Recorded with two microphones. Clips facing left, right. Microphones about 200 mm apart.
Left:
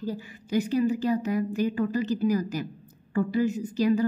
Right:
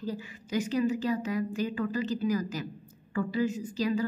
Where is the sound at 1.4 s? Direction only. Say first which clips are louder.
Left 5 dB; 45° left (ahead or behind).